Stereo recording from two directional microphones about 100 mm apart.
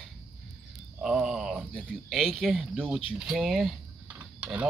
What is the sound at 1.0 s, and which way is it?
Speech, 5° right (ahead or behind).